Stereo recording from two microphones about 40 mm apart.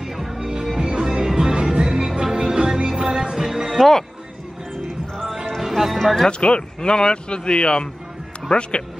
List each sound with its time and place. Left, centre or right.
0.0 s music: centre
3.7 s speech: centre
4.8 s music: centre
5.6 s music: centre
6.4 s speech: left